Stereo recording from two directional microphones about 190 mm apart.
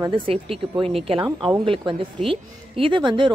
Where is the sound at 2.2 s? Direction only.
30° right (ahead or behind).